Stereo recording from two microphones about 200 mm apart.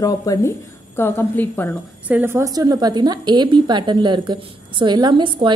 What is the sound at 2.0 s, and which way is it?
A woman's voice, 10° right (ahead or behind).